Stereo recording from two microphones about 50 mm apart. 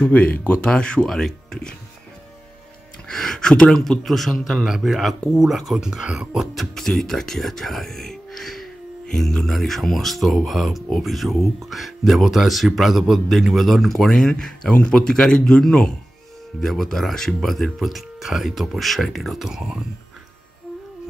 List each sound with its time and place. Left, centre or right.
0.1 s speech: left
0.6 s speech: centre
3.1 s speech: centre
4.6 s speech: centre
6.5 s speech: centre
14.7 s speech: left
16.6 s speech: centre